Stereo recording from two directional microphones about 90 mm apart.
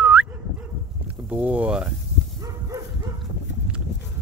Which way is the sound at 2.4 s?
40° right (ahead or behind).